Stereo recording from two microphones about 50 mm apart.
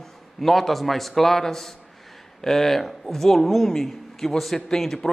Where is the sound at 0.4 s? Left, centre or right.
Centre.